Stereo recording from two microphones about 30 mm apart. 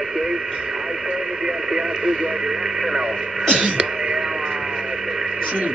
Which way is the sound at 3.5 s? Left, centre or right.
Right.